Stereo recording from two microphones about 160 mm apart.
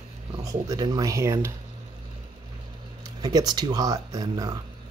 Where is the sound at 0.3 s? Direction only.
20° right (ahead or behind).